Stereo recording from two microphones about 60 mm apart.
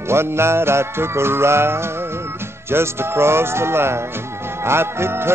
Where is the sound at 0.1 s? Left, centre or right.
Right.